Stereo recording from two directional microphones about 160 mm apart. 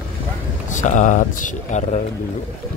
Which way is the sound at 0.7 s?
50° left (ahead or behind).